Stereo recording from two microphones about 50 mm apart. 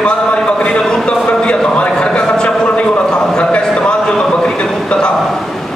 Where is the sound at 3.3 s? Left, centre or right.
Centre.